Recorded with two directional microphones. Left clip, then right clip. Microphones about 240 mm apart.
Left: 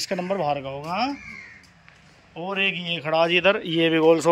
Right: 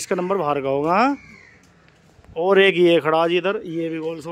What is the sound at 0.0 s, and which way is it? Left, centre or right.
Speech, centre.